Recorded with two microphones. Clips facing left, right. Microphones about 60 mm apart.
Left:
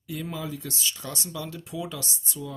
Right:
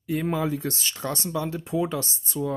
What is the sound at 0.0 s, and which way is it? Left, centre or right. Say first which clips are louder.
Speech: right 8 dB; right.